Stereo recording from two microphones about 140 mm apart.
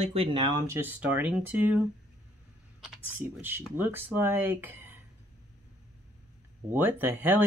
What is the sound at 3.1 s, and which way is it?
Speech, 15° right (ahead or behind).